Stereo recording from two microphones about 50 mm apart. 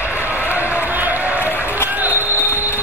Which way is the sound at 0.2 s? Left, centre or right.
Right.